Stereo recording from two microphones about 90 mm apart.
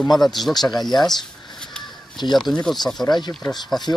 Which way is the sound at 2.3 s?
5° left (ahead or behind).